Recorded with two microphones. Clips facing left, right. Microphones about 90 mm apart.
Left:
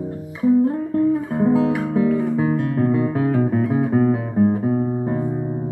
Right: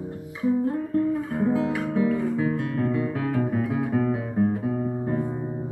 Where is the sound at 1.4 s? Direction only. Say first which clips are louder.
Left 6 dB; 25° left (ahead or behind).